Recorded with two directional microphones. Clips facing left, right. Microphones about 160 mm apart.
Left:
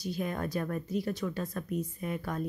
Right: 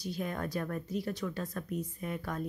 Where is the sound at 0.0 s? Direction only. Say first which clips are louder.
Left 2 dB; 15° left (ahead or behind).